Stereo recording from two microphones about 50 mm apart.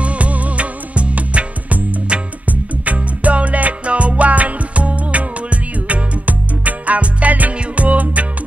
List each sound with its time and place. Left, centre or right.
0.0 s music: right